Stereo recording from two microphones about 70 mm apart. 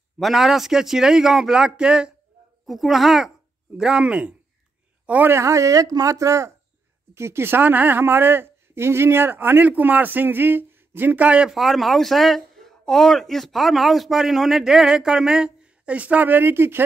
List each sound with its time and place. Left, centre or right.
0.2 s a man's voice: centre
2.6 s a man's voice: centre; by 5.3 s right
5.3 s speech: right
7.2 s a woman's voice: right; by 11.5 s centre
11.5 s speech: centre; by 16.8 s right